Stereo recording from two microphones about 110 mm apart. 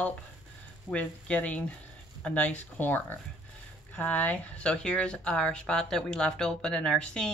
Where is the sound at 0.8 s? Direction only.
10° left (ahead or behind).